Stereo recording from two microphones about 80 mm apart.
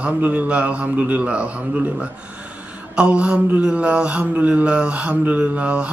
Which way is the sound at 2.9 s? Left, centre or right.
Centre.